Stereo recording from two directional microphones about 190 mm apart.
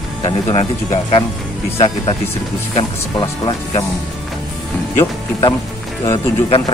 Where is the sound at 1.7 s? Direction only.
30° left (ahead or behind).